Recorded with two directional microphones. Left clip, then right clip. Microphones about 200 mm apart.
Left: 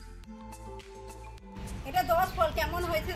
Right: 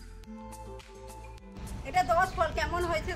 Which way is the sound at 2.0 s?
5° right (ahead or behind).